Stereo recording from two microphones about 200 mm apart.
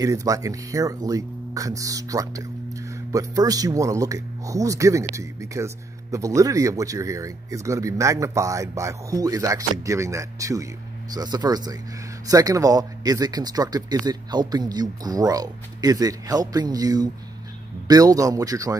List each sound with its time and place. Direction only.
0.0 s speech: 15° right (ahead or behind)